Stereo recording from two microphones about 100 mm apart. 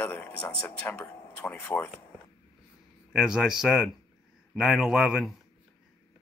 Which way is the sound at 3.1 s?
5° right (ahead or behind).